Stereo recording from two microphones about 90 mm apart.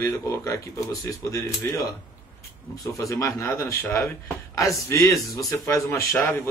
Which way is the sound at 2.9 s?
35° left (ahead or behind).